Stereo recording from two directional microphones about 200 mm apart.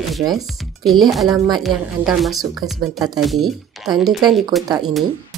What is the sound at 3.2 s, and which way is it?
Speech, centre (ahead or behind).